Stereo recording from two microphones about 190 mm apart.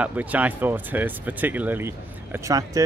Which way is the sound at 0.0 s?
10° right (ahead or behind).